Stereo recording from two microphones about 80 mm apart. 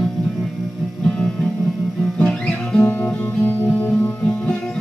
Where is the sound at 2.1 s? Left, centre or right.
Centre.